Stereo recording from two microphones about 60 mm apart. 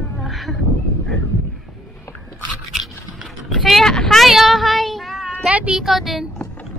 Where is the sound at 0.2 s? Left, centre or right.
Centre.